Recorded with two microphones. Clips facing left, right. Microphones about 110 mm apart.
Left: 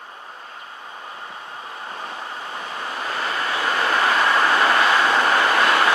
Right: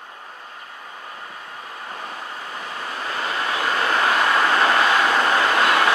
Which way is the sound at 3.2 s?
25° left (ahead or behind).